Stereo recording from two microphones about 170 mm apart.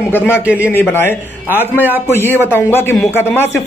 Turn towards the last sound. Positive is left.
turn(degrees=15)  # may be behind; listen again after turning